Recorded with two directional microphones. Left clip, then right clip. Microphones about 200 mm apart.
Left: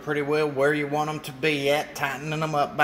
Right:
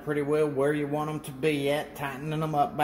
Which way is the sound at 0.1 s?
5° left (ahead or behind).